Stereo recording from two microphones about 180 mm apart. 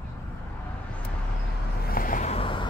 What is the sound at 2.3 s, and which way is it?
Vehicle, 30° left (ahead or behind).